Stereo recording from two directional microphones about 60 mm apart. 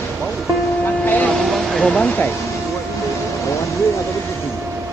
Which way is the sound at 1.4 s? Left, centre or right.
Centre.